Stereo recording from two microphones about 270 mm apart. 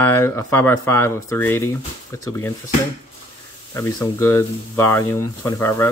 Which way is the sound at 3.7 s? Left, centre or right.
Centre.